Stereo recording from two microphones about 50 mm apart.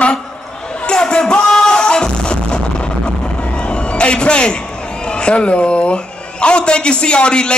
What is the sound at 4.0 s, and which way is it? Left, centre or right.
A man's voice, left.